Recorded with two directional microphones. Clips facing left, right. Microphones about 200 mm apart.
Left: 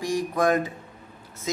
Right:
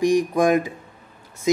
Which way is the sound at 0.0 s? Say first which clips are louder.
Right 6 dB; 15° right (ahead or behind).